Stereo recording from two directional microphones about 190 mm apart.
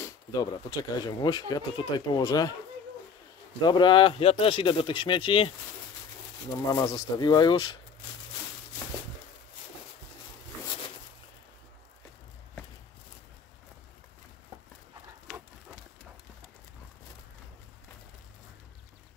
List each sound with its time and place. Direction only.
0.0 s speech: 20° left (ahead or behind)
3.6 s speech: 25° left (ahead or behind)
6.7 s speech: 20° left (ahead or behind)